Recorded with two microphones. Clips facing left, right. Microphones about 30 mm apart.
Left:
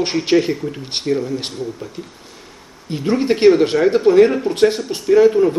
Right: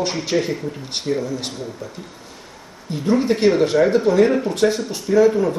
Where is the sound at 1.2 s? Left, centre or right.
Left.